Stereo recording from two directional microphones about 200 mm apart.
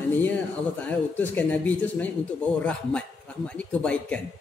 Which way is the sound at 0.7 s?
10° left (ahead or behind).